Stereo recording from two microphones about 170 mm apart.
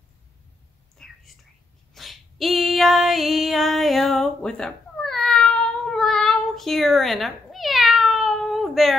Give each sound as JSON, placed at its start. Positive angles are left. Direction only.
{"t": 0.9, "sound": "whispering", "side_deg": 5}
{"t": 2.0, "sound": "female singing", "side_deg": 0}